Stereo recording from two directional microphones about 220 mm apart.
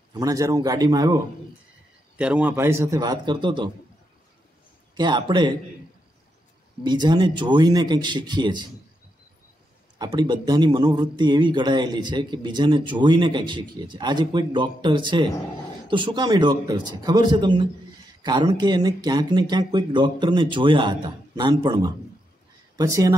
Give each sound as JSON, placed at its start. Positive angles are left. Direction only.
{"t": 0.1, "sound": "a man's voice", "side_deg": -15}
{"t": 2.1, "sound": "a man's voice", "side_deg": -5}
{"t": 4.9, "sound": "speech", "side_deg": -20}
{"t": 6.8, "sound": "speech", "side_deg": -20}
{"t": 9.9, "sound": "a man's voice", "side_deg": -20}